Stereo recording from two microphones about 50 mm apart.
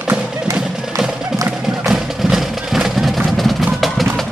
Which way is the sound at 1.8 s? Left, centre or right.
Centre.